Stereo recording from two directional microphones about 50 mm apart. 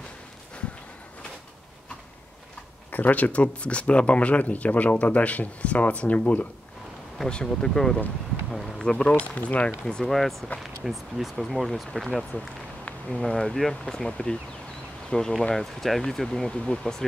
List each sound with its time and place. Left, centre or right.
2.9 s speech: left
7.2 s speech: centre
8.5 s a sound: centre
8.9 s speech: left
9.8 s speech: centre
10.6 s speech: centre
13.1 s speech: centre
14.0 s speech: centre
16.5 s speech: left